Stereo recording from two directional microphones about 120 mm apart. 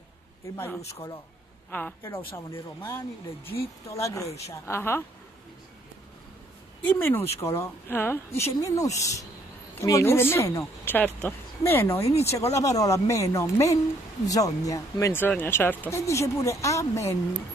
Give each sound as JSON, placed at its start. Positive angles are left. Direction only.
{"t": 0.6, "sound": "speech", "side_deg": 20}
{"t": 1.7, "sound": "speech", "side_deg": 15}
{"t": 7.1, "sound": "speech", "side_deg": 20}